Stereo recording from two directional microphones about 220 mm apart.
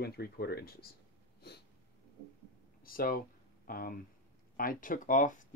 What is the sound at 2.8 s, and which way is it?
Speech, 40° left (ahead or behind).